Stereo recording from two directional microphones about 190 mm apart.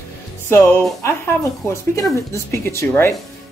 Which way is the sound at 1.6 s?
15° left (ahead or behind).